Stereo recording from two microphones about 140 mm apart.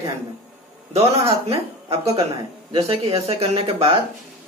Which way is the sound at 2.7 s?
45° right (ahead or behind).